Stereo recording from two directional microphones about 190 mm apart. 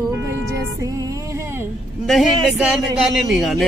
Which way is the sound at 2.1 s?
Centre (ahead or behind).